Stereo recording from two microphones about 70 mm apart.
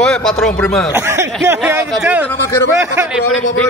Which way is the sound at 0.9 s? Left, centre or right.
Right.